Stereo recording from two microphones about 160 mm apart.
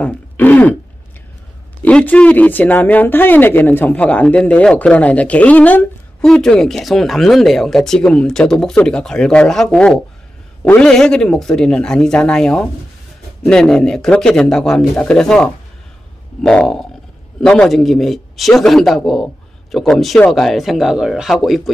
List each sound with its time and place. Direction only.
0.0 s speech: 10° left (ahead or behind)
1.9 s speech: 5° left (ahead or behind)